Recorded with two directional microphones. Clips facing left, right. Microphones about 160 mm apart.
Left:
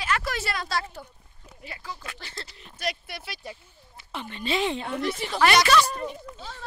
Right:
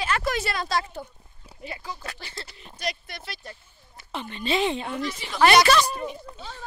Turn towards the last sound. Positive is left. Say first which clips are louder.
# left 1 dB
turn(degrees=-10)  # may be behind; listen again after turning